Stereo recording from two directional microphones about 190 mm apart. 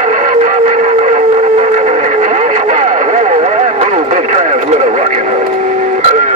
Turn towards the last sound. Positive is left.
turn(degrees=-40)  # may be behind; listen again after turning